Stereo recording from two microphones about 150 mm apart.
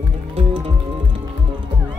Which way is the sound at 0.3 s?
40° right (ahead or behind).